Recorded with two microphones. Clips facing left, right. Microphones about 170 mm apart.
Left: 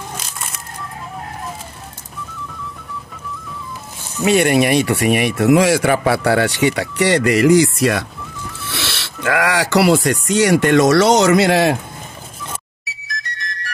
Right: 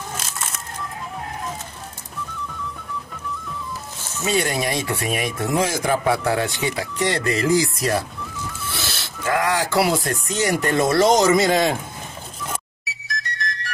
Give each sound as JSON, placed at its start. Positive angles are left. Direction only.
{"t": 4.3, "sound": "speech", "side_deg": 70}
{"t": 12.8, "sound": "whistle", "side_deg": 0}